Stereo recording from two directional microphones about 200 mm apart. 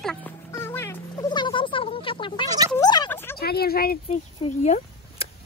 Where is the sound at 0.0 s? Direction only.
5° left (ahead or behind).